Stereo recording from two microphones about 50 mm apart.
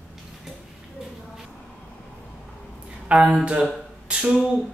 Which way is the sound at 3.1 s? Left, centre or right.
Centre.